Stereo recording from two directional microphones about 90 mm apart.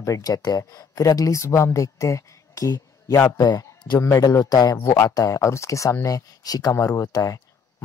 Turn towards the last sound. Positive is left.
turn(degrees=40)  # may be behind; listen again after turning